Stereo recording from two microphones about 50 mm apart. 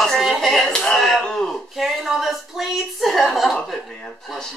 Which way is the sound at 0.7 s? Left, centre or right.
Centre.